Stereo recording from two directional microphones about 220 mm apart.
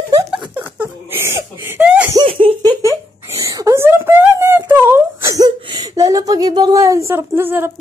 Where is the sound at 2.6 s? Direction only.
15° right (ahead or behind).